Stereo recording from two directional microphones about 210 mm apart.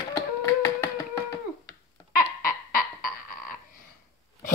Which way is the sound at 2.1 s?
40° left (ahead or behind).